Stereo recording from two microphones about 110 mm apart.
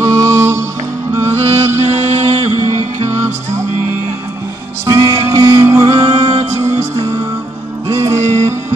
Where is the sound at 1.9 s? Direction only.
85° right.